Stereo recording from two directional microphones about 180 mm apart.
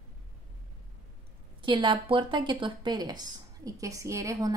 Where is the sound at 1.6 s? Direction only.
30° right (ahead or behind).